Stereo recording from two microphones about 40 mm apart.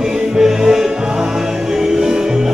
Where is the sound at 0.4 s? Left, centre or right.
Centre.